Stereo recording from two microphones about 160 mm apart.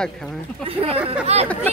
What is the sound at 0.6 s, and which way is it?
Speech, 35° right (ahead or behind).